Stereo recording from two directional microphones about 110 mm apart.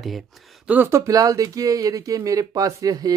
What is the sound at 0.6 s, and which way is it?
Speech, 15° right (ahead or behind).